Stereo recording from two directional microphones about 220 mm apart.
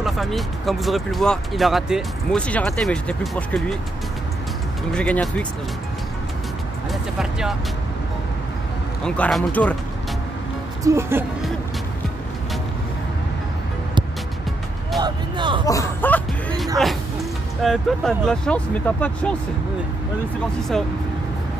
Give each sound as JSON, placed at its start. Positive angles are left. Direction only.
{"t": 0.0, "sound": "speech", "side_deg": 0}
{"t": 4.9, "sound": "speech", "side_deg": 5}
{"t": 6.9, "sound": "speech", "side_deg": 0}
{"t": 9.0, "sound": "speech", "side_deg": 5}
{"t": 10.8, "sound": "speech", "side_deg": -10}
{"t": 15.0, "sound": "music", "side_deg": -20}
{"t": 15.6, "sound": "music", "side_deg": 15}
{"t": 16.7, "sound": "speech", "side_deg": 0}
{"t": 20.7, "sound": "speech", "side_deg": 0}